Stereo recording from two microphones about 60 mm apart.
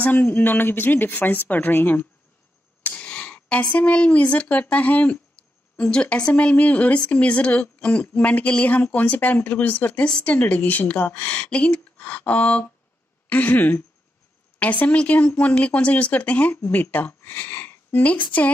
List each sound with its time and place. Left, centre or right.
0.0 s speech: left
2.8 s a woman's voice: left
16.5 s speech: left